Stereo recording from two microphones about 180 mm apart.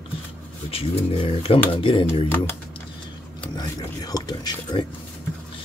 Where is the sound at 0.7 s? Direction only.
30° left (ahead or behind).